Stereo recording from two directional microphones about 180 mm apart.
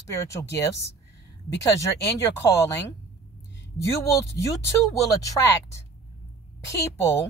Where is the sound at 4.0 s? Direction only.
15° left (ahead or behind).